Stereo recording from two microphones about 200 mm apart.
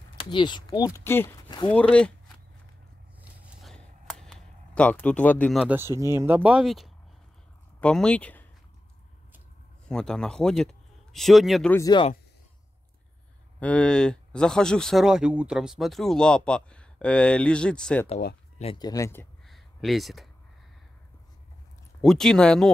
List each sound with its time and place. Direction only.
0.3 s speech: 20° left (ahead or behind); by 2.1 s 5° left (ahead or behind)
3.2 s vehicle: 5° right (ahead or behind)
3.7 s a sound: 5° left (ahead or behind)
5.7 s speech: 10° right (ahead or behind); by 8.5 s 5° left (ahead or behind)
9.8 s speech: 5° left (ahead or behind)
11.7 s speech: 20° left (ahead or behind)
13.6 s speech: 5° left (ahead or behind)
18.6 s speech: 25° left (ahead or behind)
19.4 s a sound: centre (ahead or behind)
22.0 s speech: centre (ahead or behind)